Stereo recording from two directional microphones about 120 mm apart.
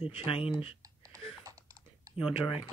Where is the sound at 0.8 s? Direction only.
30° right (ahead or behind).